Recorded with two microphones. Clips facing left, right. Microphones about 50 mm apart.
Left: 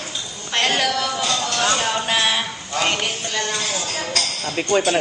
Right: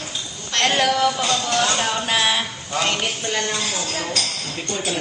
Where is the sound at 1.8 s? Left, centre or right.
Centre.